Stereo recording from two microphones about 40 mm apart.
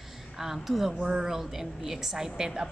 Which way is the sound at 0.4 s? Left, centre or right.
Centre.